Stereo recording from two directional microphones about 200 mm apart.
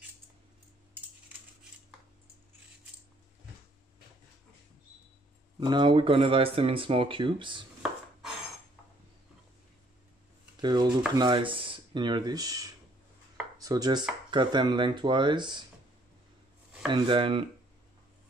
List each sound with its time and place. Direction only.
5.6 s speech: 25° right (ahead or behind)
10.6 s stir: 20° right (ahead or behind)
11.1 s speech: 25° right (ahead or behind)
13.6 s chopping: 20° right (ahead or behind)
14.3 s speech: 20° right (ahead or behind)
16.9 s speech: 25° right (ahead or behind)